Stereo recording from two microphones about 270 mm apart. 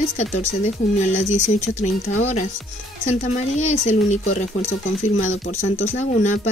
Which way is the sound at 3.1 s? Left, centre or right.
Left.